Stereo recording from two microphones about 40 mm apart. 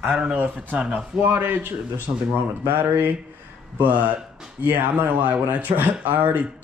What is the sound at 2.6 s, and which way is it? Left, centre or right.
Speech, right.